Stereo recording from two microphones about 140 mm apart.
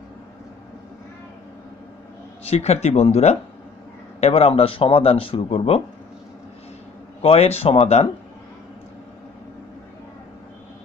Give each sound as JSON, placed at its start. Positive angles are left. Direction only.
{"t": 2.4, "sound": "speech", "side_deg": 50}
{"t": 7.2, "sound": "speech", "side_deg": 50}